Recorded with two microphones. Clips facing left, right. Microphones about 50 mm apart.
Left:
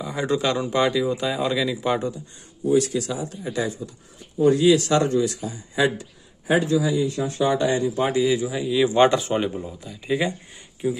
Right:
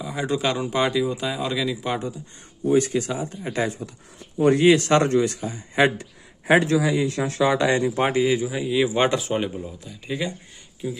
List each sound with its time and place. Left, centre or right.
0.0 s a man's voice: centre
2.7 s speech: right
3.6 s a man's voice: right
6.4 s speech: right
7.7 s a man's voice: right
8.1 s speech: right; by 9.6 s centre
10.8 s speech: left